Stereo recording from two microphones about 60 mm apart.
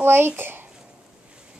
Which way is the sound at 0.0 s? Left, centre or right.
Right.